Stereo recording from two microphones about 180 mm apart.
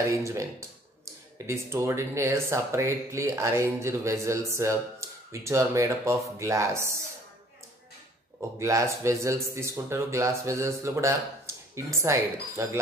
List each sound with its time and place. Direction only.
0.0 s speech: 15° right (ahead or behind)
8.4 s speech: 15° right (ahead or behind)